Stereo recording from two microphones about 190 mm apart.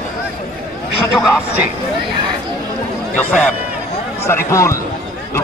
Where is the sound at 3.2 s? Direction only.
5° left (ahead or behind).